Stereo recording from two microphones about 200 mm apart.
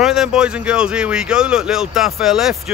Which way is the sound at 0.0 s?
Centre (ahead or behind).